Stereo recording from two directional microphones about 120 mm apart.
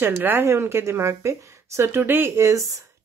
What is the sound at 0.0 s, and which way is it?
Speech, 20° right (ahead or behind).